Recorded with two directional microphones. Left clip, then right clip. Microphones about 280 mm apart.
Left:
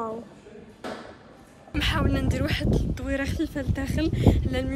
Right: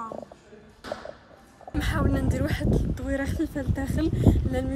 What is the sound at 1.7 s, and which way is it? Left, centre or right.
Speech, centre.